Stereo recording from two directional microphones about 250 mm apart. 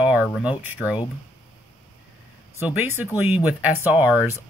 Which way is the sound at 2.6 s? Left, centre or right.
Centre.